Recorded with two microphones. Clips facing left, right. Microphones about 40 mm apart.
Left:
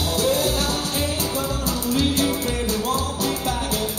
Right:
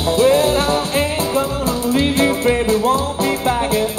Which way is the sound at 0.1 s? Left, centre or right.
Right.